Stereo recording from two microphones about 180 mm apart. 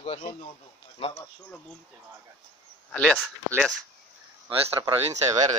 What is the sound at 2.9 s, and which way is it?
Speech, 5° left (ahead or behind).